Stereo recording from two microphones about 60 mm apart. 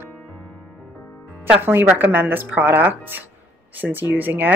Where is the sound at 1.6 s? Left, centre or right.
Right.